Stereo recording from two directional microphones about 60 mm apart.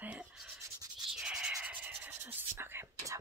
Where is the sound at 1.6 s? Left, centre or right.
Right.